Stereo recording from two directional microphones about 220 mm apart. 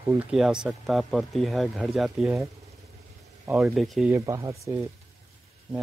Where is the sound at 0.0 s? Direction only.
10° right (ahead or behind).